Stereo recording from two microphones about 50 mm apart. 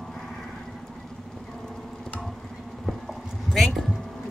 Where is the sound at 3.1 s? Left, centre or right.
Centre.